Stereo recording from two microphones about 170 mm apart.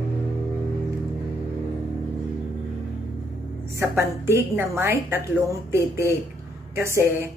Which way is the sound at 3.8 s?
15° right (ahead or behind).